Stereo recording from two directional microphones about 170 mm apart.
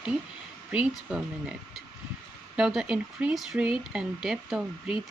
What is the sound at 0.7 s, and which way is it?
Speech, 5° right (ahead or behind).